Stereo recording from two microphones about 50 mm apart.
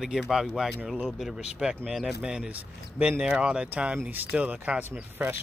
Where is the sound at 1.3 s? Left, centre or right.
Centre.